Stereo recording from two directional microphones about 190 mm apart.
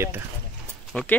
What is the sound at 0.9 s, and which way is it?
Speech, 5° left (ahead or behind).